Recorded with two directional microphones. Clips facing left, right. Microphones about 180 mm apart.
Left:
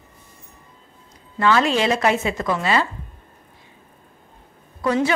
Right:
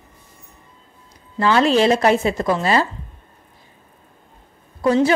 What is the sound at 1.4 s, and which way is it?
A woman's voice, 35° right (ahead or behind).